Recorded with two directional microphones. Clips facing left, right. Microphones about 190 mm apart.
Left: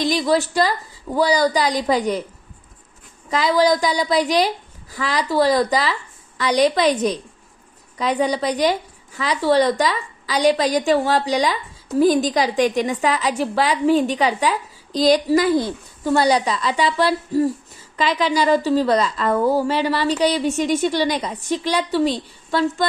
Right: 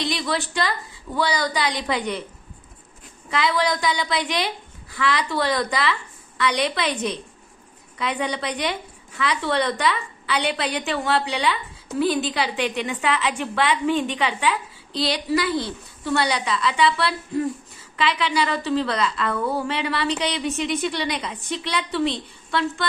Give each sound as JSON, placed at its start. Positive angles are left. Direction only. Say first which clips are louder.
{"t": 0.0, "sound": "a woman's voice", "louder": "left 7 dB", "side_deg": 40}
{"t": 3.3, "sound": "a woman's voice", "louder": "left 6 dB", "side_deg": 40}